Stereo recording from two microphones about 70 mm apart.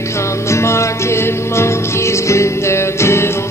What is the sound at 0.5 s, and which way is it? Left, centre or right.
Music, left.